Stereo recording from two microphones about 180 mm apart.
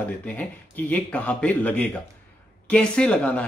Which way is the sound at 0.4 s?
10° left (ahead or behind).